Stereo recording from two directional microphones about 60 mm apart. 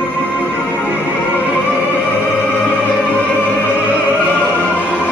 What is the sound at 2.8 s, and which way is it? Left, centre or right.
Opera, left.